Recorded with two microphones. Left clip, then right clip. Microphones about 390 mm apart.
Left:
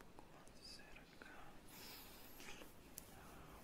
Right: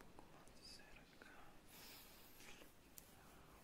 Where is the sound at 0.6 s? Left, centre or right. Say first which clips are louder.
Left 3 dB; left.